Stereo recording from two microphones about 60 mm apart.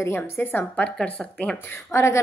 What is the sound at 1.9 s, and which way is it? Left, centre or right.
Speech, left.